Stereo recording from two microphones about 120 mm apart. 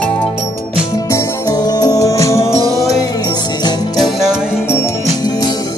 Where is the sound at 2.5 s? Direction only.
30° right (ahead or behind).